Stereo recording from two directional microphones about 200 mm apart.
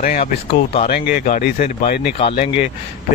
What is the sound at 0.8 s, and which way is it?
Speech, 50° left (ahead or behind).